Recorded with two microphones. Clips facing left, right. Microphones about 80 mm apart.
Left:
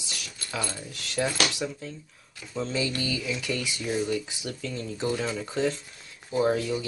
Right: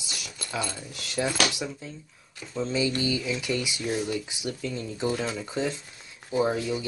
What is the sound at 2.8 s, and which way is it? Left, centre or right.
Speech, centre.